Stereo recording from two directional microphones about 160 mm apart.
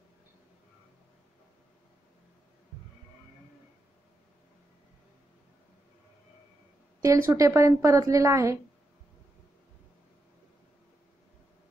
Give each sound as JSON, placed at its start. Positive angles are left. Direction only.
{"t": 7.0, "sound": "a woman's voice", "side_deg": -20}